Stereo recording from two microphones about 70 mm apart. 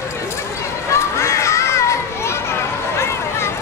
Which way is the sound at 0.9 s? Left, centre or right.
Left.